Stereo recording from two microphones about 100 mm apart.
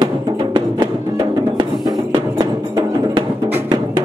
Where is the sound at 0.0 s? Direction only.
45° right (ahead or behind).